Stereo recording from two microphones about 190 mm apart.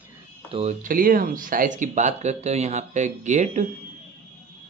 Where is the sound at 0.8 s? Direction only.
50° right (ahead or behind).